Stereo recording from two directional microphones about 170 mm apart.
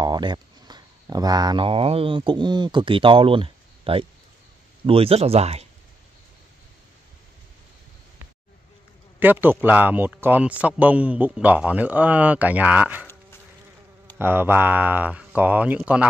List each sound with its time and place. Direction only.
0.0 s speech: 25° right (ahead or behind)
9.2 s a man's voice: 10° right (ahead or behind)
13.0 s insect: 15° left (ahead or behind)
14.1 s a man's voice: 15° right (ahead or behind)